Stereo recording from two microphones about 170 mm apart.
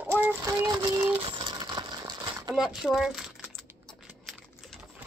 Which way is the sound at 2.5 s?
5° right (ahead or behind).